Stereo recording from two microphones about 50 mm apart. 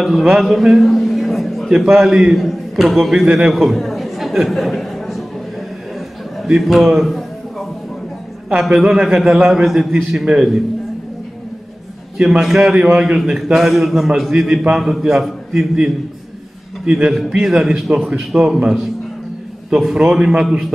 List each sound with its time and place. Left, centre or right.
0.0 s a man's voice: centre
1.7 s a man's voice: centre
5.9 s a sound: centre
6.6 s a man's voice: centre
7.0 s a sound: centre
8.5 s a man's voice: centre
12.2 s a man's voice: centre
16.8 s speech: right
17.3 s a man's voice: centre
19.9 s a man's voice: centre